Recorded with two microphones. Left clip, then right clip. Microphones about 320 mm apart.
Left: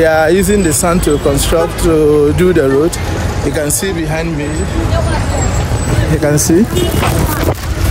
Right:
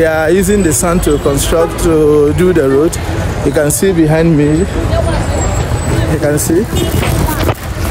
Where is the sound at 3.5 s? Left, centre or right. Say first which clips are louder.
Right 6 dB; right.